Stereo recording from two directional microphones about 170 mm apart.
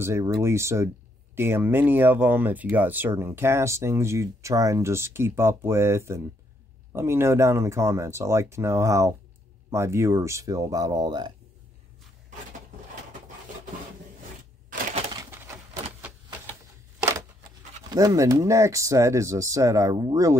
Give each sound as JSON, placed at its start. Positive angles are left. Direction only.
{"t": 0.0, "sound": "speech", "side_deg": -20}
{"t": 15.1, "sound": "a sound", "side_deg": -15}
{"t": 17.0, "sound": "speech", "side_deg": -20}